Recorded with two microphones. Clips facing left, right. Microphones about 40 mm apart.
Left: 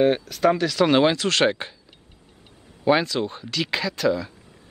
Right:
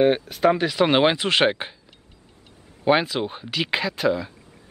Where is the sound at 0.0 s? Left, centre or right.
Centre.